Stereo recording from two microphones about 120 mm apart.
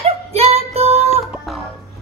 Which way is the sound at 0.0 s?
60° right (ahead or behind).